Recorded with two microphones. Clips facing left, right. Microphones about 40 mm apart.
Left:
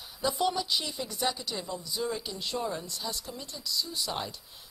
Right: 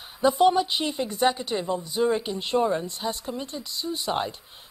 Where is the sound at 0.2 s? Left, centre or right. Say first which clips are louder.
Right 10 dB; right.